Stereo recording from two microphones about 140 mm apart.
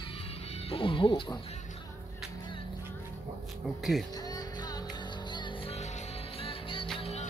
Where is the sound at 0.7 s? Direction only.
40° left (ahead or behind).